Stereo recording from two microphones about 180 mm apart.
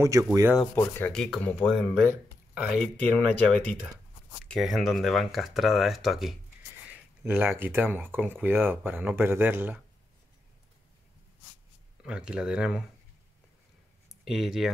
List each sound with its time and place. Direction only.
0.0 s speech: 15° right (ahead or behind)
0.7 s speech: 10° left (ahead or behind); by 2.9 s 5° right (ahead or behind)
3.0 s speech: 5° left (ahead or behind); by 9.8 s 10° right (ahead or behind)
12.0 s speech: 5° right (ahead or behind)
14.2 s speech: centre (ahead or behind)